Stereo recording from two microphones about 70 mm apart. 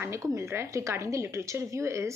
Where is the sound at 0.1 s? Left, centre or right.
Right.